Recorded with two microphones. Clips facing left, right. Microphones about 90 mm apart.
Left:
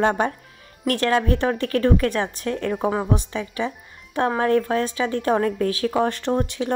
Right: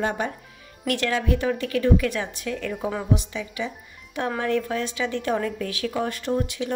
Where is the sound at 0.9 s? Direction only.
45° left (ahead or behind).